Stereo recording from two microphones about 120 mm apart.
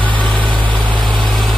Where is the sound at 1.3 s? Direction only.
Centre (ahead or behind).